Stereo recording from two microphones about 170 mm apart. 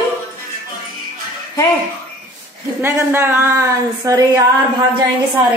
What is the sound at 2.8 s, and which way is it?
Speech, 15° right (ahead or behind).